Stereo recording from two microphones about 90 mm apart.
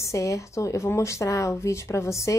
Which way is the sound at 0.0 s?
35° left (ahead or behind).